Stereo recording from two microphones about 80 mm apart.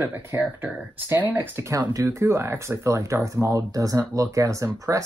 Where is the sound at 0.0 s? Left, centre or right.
Right.